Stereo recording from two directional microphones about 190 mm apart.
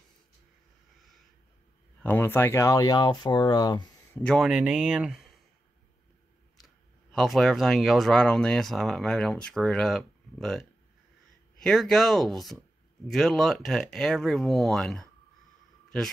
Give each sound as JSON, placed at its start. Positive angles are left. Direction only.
{"t": 2.0, "sound": "speech", "side_deg": 10}
{"t": 4.1, "sound": "speech", "side_deg": 5}
{"t": 6.6, "sound": "speech", "side_deg": 0}